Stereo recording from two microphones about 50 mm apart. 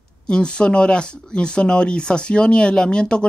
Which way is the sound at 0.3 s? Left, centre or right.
Centre.